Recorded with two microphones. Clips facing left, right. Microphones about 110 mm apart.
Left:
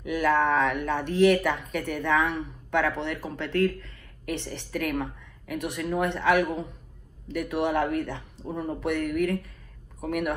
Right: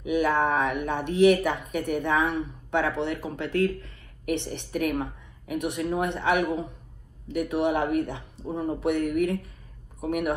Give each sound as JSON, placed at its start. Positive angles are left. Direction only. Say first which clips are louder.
{"t": 0.0, "sound": "speech", "louder": "even", "side_deg": -15}